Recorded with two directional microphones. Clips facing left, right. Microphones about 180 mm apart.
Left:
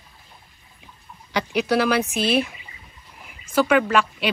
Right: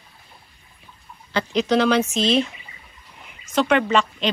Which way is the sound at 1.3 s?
10° left (ahead or behind).